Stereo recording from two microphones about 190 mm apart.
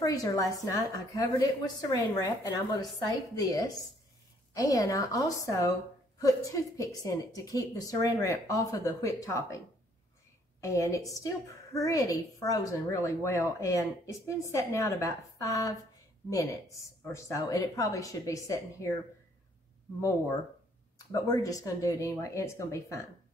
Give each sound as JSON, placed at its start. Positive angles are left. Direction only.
{"t": 0.0, "sound": "a woman's voice", "side_deg": 20}
{"t": 10.6, "sound": "a woman's voice", "side_deg": 15}
{"t": 21.1, "sound": "a woman's voice", "side_deg": 20}